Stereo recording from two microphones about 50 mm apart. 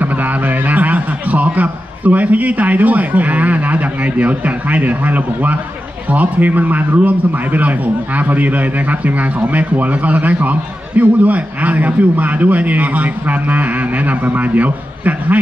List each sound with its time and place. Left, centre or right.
0.0 s a man's voice: right